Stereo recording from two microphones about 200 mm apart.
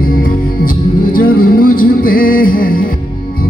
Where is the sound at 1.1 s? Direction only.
45° left (ahead or behind).